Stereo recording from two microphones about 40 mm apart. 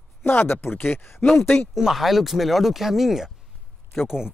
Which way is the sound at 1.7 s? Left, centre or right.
Centre.